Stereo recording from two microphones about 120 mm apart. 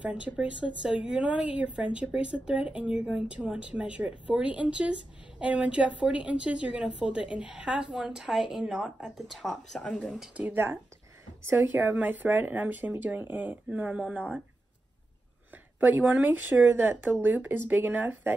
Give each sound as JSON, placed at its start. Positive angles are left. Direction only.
{"t": 0.0, "sound": "speech", "side_deg": -10}
{"t": 10.3, "sound": "speech", "side_deg": -15}
{"t": 15.5, "sound": "speech", "side_deg": -15}